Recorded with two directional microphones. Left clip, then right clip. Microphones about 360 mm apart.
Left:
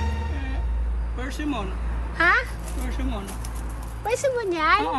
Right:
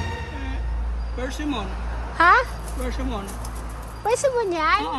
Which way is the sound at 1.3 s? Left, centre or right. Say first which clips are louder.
Left 1 dB; centre.